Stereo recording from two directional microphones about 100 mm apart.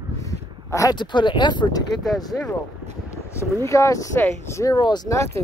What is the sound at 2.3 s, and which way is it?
Speech, 10° left (ahead or behind).